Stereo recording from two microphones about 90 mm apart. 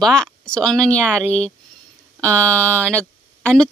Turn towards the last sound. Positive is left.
turn(degrees=15)  # may be behind; listen again after turning